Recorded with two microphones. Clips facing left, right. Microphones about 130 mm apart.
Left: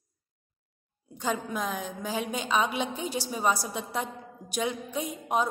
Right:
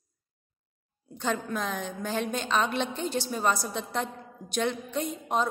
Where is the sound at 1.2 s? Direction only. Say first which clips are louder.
Even; 5° left (ahead or behind).